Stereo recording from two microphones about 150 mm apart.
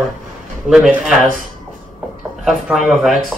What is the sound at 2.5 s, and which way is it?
Speech, 5° right (ahead or behind).